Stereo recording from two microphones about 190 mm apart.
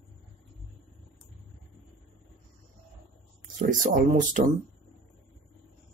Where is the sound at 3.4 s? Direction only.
40° right (ahead or behind).